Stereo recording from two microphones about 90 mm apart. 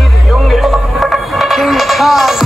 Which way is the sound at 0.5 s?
Centre (ahead or behind).